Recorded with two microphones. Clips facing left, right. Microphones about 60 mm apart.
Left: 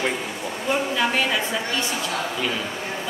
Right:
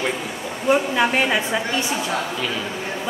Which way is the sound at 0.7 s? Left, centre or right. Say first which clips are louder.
Right 5 dB; right.